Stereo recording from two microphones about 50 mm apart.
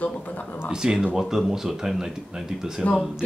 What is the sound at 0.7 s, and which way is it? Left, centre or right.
Speech, centre.